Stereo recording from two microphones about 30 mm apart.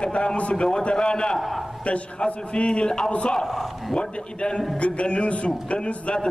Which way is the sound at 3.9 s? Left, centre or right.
Left.